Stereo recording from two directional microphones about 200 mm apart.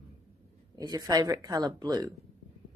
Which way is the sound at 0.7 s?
20° right (ahead or behind).